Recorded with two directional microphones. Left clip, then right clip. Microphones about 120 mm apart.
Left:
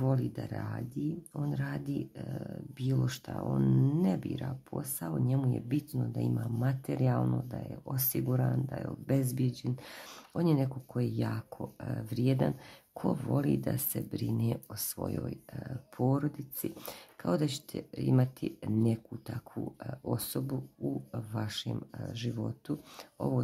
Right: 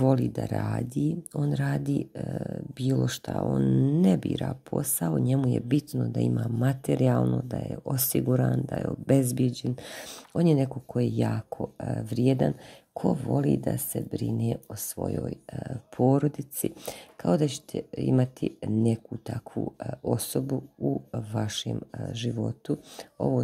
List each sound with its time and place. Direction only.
0.0 s speech: 50° right (ahead or behind)
3.4 s speech: 30° right (ahead or behind)
4.0 s speech: 50° right (ahead or behind)
17.2 s speech: 30° right (ahead or behind)